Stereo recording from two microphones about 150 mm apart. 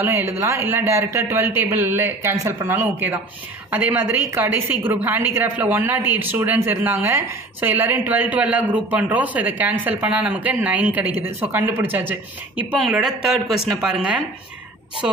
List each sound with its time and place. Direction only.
0.0 s speech: 15° right (ahead or behind)